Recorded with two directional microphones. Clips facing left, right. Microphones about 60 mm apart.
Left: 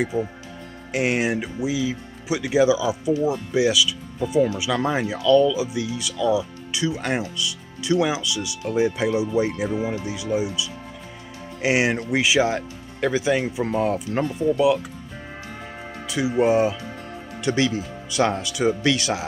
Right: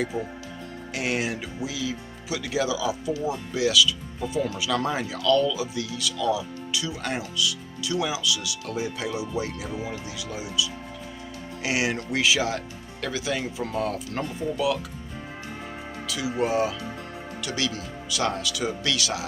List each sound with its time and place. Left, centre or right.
0.1 s speech: centre
0.9 s speech: left
16.1 s speech: left